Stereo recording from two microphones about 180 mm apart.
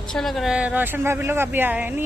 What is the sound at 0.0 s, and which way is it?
Speech, centre (ahead or behind).